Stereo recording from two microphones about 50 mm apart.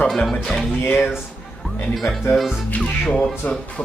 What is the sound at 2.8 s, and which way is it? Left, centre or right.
Speech, centre.